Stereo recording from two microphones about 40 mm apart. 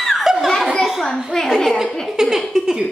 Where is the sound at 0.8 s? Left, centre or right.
Centre.